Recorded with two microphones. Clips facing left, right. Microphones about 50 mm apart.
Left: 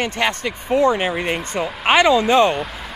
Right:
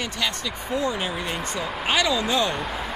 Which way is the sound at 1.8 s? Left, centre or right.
Left.